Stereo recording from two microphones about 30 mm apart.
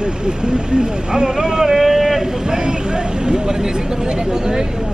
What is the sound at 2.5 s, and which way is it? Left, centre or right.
Speech, right.